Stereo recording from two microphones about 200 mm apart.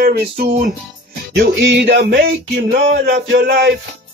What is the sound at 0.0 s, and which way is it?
Music, 50° right (ahead or behind).